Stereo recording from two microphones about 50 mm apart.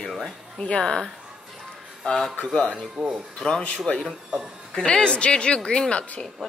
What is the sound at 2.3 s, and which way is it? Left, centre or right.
A woman's voice, left.